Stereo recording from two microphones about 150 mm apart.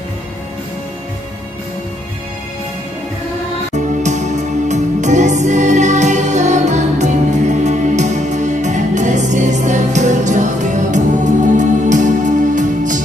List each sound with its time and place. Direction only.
4.0 s music: 50° right (ahead or behind)